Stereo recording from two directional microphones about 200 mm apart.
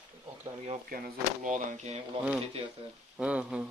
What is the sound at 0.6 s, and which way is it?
Speech, 35° right (ahead or behind).